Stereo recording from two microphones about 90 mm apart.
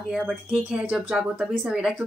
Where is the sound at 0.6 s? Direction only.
15° right (ahead or behind).